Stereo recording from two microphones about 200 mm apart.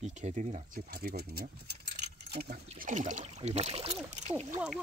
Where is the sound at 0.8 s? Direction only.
50° right (ahead or behind).